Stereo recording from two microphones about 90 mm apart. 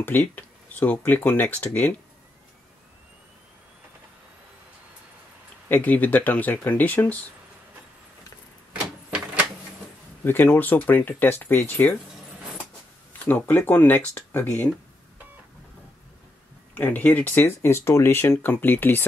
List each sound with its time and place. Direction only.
0.0 s speech: 20° left (ahead or behind)
5.7 s speech: 20° left (ahead or behind)
9.1 s printer: 15° right (ahead or behind)
10.2 s speech: 25° left (ahead or behind)
13.2 s speech: 20° left (ahead or behind)
16.7 s speech: 20° left (ahead or behind)